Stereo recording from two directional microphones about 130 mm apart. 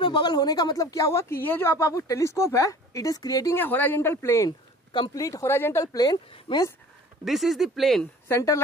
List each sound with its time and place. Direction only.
0.0 s speech: 35° left (ahead or behind)
3.5 s a man's voice: 15° left (ahead or behind)
4.5 s a sound: 40° left (ahead or behind)
5.1 s speech: 25° left (ahead or behind)
6.5 s speech: 40° left (ahead or behind)
7.2 s speech: centre (ahead or behind)
8.0 s speech: 20° left (ahead or behind)